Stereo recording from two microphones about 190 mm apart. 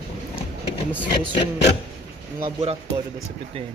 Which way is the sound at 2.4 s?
30° right (ahead or behind).